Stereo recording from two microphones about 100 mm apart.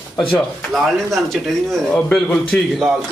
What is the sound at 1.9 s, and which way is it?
Speech, 15° left (ahead or behind).